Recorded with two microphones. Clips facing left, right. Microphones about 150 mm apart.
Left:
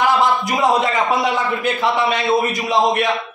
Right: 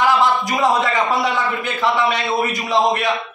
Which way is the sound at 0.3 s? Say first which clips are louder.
Left 1 dB; centre (ahead or behind).